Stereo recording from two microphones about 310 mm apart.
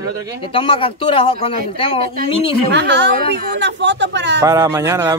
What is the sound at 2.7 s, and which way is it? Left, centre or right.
Speech, right.